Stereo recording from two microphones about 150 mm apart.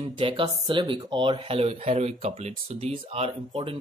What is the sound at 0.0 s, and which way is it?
Speech, 35° right (ahead or behind).